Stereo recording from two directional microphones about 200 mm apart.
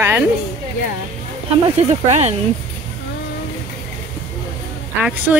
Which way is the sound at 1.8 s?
35° right (ahead or behind).